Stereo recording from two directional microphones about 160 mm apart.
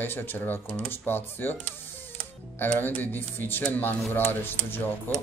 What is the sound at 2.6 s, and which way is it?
Speech, 10° left (ahead or behind).